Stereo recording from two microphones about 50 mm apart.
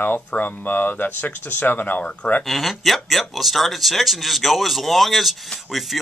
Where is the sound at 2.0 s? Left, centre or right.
Left.